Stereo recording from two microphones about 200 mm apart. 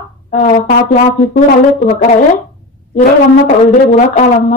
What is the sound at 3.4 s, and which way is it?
Brass instrument, 40° left (ahead or behind).